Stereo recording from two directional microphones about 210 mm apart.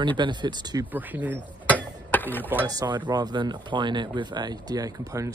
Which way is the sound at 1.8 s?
10° left (ahead or behind).